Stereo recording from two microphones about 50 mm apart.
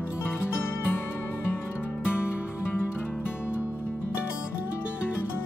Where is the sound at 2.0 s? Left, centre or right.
Left.